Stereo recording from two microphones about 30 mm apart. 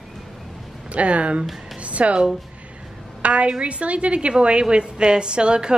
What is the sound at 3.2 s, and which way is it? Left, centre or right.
A woman's voice, right.